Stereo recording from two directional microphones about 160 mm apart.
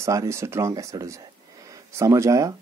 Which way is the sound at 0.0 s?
20° right (ahead or behind).